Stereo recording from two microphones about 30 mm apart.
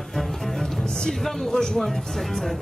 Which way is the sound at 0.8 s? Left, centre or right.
Left.